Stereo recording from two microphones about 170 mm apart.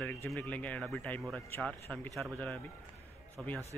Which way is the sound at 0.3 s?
10° left (ahead or behind).